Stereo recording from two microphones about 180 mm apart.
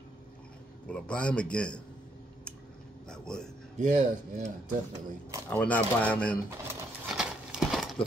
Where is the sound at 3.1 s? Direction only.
5° left (ahead or behind).